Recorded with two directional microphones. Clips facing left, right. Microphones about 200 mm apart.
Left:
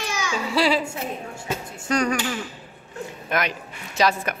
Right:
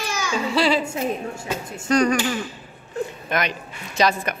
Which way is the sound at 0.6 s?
10° left (ahead or behind).